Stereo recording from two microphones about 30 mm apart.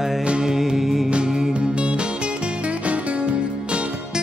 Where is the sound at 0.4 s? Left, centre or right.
Centre.